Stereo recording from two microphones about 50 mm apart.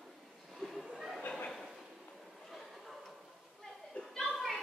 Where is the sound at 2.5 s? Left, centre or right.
Centre.